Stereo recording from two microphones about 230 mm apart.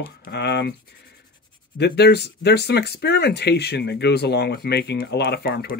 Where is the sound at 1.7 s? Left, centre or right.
Left.